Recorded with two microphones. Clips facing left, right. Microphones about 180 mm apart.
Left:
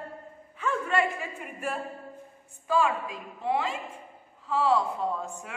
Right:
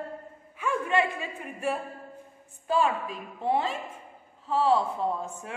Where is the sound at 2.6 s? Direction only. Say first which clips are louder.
Even; 25° right (ahead or behind).